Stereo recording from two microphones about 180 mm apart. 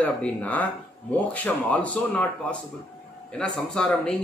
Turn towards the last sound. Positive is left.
turn(degrees=5)  # may be behind; listen again after turning